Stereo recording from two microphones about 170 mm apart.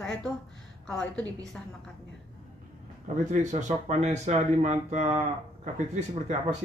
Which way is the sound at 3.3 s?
45° right (ahead or behind).